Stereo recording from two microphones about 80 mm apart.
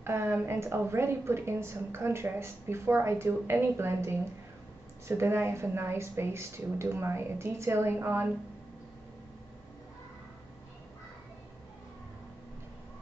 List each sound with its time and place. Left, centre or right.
0.0 s a woman's voice: right